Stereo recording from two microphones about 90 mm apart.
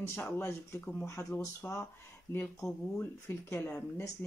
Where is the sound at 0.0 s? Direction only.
25° left (ahead or behind).